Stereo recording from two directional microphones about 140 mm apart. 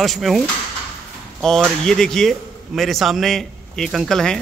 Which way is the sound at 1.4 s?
5° left (ahead or behind).